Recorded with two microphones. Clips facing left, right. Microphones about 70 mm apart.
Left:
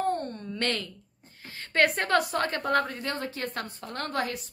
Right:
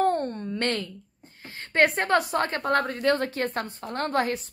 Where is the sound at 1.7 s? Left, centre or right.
Right.